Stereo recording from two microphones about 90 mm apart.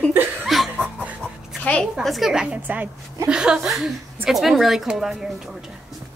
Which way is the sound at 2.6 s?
20° right (ahead or behind).